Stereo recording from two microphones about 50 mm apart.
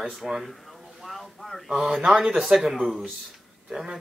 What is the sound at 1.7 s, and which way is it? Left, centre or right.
Speech, centre.